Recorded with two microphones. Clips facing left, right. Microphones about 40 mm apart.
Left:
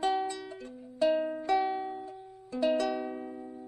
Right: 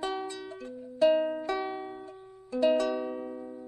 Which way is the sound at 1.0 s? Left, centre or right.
Centre.